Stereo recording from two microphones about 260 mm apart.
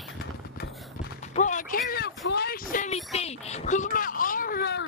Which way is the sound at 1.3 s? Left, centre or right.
Left.